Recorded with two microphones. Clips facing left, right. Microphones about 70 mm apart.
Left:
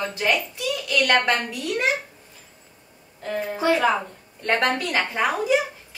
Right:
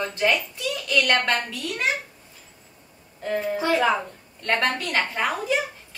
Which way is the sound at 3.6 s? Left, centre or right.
Centre.